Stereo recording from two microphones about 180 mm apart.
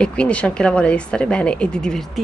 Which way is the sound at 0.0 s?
5° left (ahead or behind).